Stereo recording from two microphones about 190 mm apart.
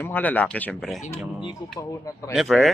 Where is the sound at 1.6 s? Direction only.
20° left (ahead or behind).